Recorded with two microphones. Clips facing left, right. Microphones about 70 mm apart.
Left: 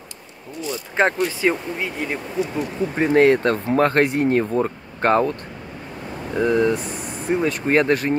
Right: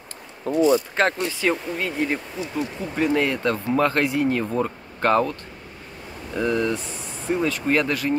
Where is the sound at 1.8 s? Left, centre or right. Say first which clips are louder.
Right 4 dB; centre.